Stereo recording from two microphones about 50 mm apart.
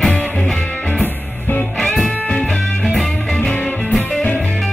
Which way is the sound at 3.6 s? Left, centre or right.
Left.